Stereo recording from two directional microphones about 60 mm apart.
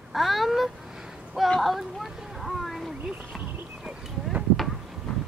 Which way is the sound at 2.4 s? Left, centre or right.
Centre.